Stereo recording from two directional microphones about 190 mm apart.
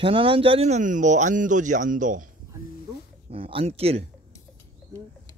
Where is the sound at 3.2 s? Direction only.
30° right (ahead or behind).